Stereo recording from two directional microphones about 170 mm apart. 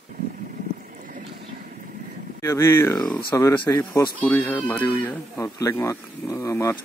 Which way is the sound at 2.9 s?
5° left (ahead or behind).